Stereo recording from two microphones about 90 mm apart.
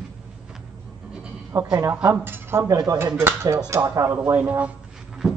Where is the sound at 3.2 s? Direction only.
30° right (ahead or behind).